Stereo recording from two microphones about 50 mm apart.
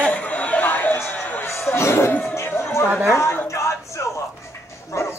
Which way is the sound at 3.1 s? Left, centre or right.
Left.